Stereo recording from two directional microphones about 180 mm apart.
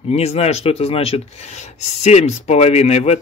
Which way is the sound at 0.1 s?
35° left (ahead or behind).